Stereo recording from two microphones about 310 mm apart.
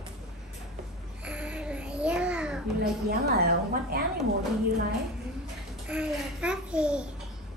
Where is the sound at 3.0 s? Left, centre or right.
Right.